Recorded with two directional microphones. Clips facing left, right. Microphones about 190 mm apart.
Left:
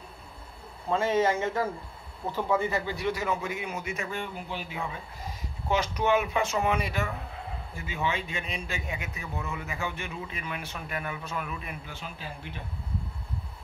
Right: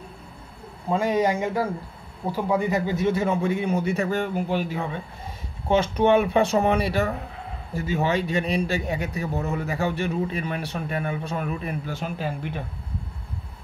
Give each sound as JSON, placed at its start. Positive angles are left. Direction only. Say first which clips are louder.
{"t": 0.8, "sound": "a man's voice", "louder": "right 3 dB", "side_deg": -15}